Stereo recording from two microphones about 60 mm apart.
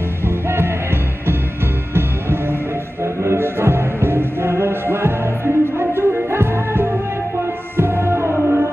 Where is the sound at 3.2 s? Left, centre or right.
Right.